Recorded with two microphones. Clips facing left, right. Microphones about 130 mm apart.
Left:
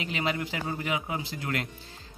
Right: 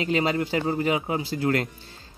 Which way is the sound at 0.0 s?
35° right (ahead or behind).